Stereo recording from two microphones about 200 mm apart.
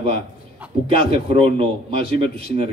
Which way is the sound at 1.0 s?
30° right (ahead or behind).